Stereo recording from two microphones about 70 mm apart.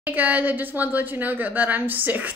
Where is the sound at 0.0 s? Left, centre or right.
Right.